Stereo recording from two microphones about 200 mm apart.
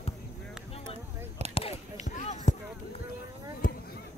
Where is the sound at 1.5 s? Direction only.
30° left (ahead or behind).